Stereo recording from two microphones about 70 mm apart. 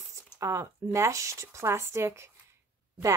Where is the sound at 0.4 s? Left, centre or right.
Right.